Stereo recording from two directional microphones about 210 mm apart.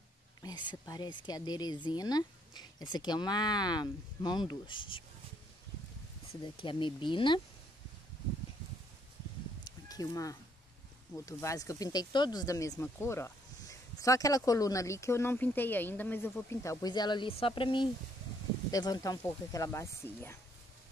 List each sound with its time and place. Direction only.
0.4 s speech: 20° left (ahead or behind)
6.4 s speech: 25° left (ahead or behind)
9.7 s cat: 15° left (ahead or behind)
11.1 s speech: 15° left (ahead or behind)